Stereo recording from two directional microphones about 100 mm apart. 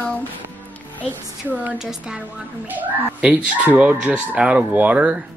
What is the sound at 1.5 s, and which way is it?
A child's voice, 15° right (ahead or behind).